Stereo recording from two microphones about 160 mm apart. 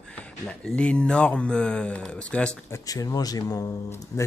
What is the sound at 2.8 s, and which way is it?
Speech, 20° left (ahead or behind).